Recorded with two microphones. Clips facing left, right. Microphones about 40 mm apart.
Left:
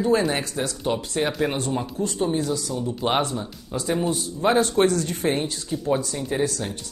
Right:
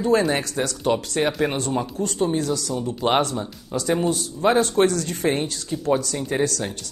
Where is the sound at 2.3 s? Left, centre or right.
Right.